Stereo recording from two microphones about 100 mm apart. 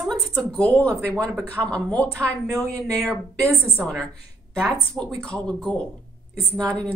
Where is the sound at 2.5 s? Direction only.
30° right (ahead or behind).